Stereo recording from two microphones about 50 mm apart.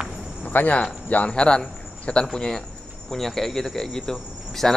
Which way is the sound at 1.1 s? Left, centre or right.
Left.